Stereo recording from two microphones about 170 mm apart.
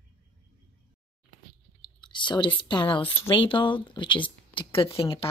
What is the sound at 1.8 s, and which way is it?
Clicking, 30° left (ahead or behind).